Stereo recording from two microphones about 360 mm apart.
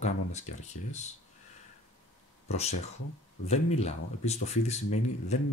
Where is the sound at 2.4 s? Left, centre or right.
Centre.